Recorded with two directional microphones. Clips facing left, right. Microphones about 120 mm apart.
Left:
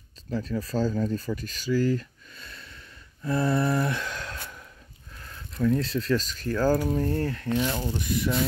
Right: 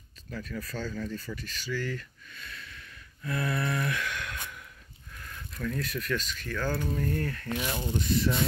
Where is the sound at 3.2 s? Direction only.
30° left (ahead or behind).